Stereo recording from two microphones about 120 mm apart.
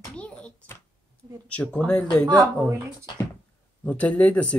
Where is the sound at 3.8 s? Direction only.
15° left (ahead or behind).